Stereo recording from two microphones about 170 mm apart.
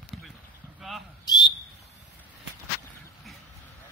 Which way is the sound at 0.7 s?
Centre (ahead or behind).